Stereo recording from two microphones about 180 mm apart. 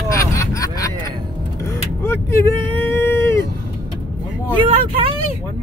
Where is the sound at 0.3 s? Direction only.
20° left (ahead or behind).